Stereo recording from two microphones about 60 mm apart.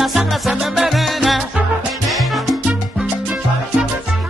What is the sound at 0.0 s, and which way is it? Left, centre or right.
Music, centre.